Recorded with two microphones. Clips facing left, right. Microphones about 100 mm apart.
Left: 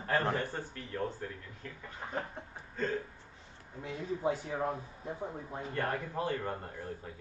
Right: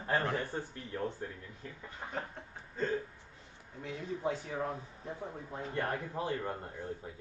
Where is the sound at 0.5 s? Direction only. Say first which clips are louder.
Even; 15° right (ahead or behind).